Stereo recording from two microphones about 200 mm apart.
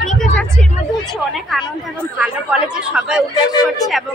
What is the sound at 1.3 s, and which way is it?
Speech, centre (ahead or behind).